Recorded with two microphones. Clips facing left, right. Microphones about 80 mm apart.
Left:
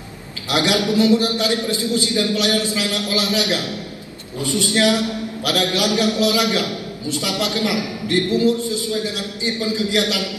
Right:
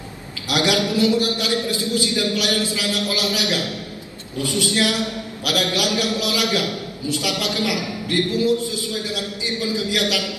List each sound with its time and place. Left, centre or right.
0.5 s a man's voice: left